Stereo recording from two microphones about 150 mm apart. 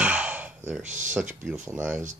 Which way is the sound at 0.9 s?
55° right (ahead or behind).